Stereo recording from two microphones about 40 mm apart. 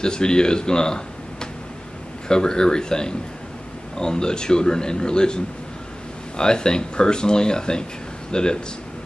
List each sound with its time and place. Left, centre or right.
0.0 s speech: centre